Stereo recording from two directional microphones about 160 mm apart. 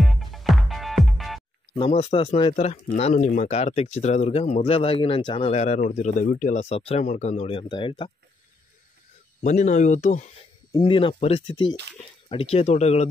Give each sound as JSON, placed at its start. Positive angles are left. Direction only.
{"t": 0.0, "sound": "music", "side_deg": 0}
{"t": 1.8, "sound": "speech", "side_deg": 40}
{"t": 5.5, "sound": "speech", "side_deg": 45}
{"t": 6.2, "sound": "speech", "side_deg": 70}
{"t": 6.5, "sound": "speech", "side_deg": 40}
{"t": 9.4, "sound": "speech", "side_deg": 45}
{"t": 10.8, "sound": "speech", "side_deg": 35}